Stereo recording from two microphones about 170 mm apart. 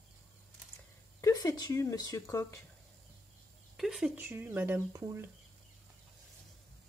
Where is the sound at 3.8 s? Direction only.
Centre (ahead or behind); by 5.3 s 15° right (ahead or behind).